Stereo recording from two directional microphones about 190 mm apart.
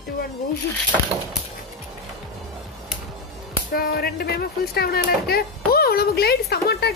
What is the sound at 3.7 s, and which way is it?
Speech, 50° left (ahead or behind).